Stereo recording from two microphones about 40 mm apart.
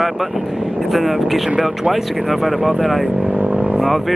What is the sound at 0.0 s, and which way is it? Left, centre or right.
Speech, centre.